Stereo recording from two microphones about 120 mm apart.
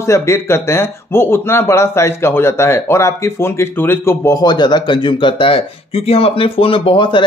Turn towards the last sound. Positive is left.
turn(degrees=45)  # may be behind; listen again after turning